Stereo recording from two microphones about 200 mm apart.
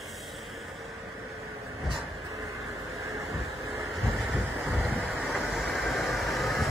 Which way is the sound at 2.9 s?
15° right (ahead or behind).